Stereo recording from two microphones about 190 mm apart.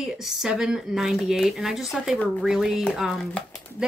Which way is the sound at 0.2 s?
5° right (ahead or behind).